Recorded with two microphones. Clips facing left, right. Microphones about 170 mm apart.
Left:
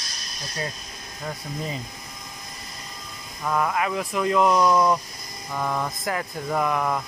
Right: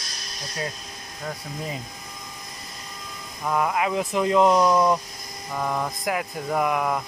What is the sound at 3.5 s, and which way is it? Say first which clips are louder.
Speech: right 1 dB; 15° right (ahead or behind).